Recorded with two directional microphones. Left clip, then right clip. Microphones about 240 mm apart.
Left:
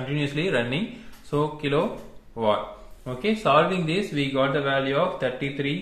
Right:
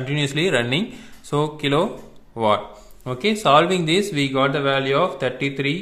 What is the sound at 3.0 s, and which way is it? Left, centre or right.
Speech, right.